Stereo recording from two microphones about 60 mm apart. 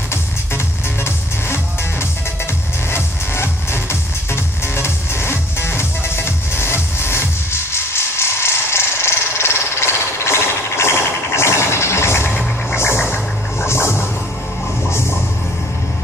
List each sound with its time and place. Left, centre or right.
1.0 s music: left
7.7 s a sound: left
12.7 s scratching: left